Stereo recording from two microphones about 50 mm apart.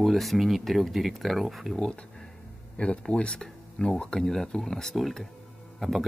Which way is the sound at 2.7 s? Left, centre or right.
Left.